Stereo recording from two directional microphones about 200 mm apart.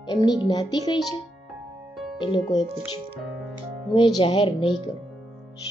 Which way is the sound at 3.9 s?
25° left (ahead or behind).